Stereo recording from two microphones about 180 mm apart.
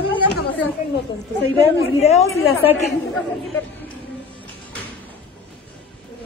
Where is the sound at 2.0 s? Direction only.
35° left (ahead or behind).